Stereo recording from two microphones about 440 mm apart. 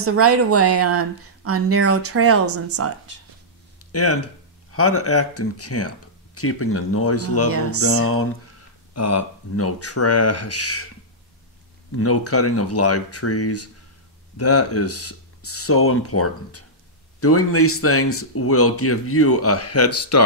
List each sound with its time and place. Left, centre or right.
0.0 s speech: right
3.9 s speech: left
7.5 s speech: right
8.9 s speech: left
11.9 s speech: left